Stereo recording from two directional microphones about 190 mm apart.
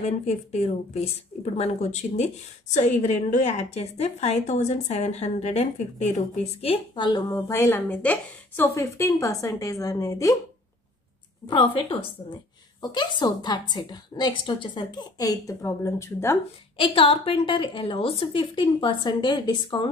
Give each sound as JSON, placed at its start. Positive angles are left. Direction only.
{"t": 0.0, "sound": "a woman's voice", "side_deg": 35}
{"t": 11.4, "sound": "a woman's voice", "side_deg": 25}
{"t": 16.7, "sound": "a woman's voice", "side_deg": 30}